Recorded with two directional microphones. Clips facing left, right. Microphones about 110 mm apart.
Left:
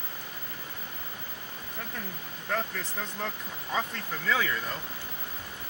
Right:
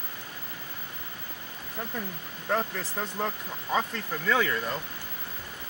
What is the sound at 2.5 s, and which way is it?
Speech, 10° right (ahead or behind).